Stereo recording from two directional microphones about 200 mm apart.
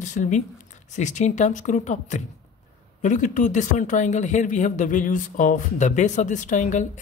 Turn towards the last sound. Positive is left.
turn(degrees=35)  # may be behind; listen again after turning